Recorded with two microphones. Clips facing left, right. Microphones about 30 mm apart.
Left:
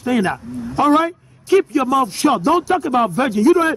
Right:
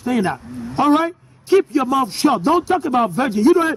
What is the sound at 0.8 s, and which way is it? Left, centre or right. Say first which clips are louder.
Speech: left 1 dB; left.